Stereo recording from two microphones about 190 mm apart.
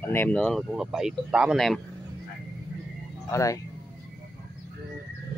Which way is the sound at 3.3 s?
15° left (ahead or behind).